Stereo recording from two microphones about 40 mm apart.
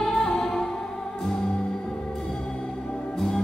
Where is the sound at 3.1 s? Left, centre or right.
Centre.